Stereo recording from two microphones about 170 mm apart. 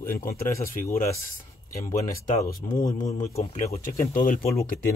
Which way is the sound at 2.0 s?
45° left (ahead or behind).